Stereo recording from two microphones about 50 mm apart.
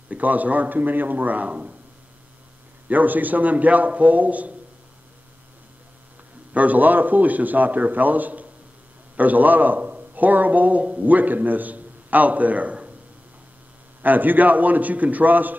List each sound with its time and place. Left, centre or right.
0.1 s a man's voice: right
2.9 s a man's voice: right
6.5 s a man's voice: right
14.0 s a man's voice: right